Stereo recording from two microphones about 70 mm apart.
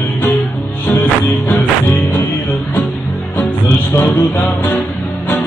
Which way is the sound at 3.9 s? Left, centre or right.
Left.